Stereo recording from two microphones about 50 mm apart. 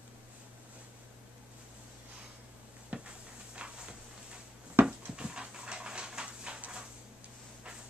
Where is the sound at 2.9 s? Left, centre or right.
Right.